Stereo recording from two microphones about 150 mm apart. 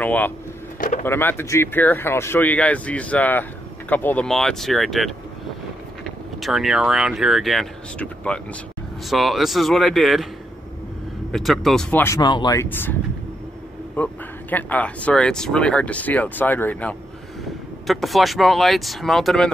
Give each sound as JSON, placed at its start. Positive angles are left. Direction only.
{"t": 0.0, "sound": "a sound", "side_deg": 10}
{"t": 0.7, "sound": "a sound", "side_deg": 65}
{"t": 1.0, "sound": "speech", "side_deg": 15}
{"t": 6.4, "sound": "speech", "side_deg": 0}
{"t": 11.3, "sound": "speech", "side_deg": 0}
{"t": 12.2, "sound": "speech", "side_deg": 30}
{"t": 12.6, "sound": "speech", "side_deg": 15}
{"t": 13.9, "sound": "speech", "side_deg": 10}
{"t": 17.8, "sound": "speech", "side_deg": 0}